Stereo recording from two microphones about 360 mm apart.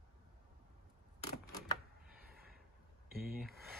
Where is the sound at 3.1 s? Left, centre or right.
Right.